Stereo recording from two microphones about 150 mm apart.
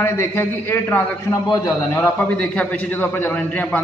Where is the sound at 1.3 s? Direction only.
25° left (ahead or behind).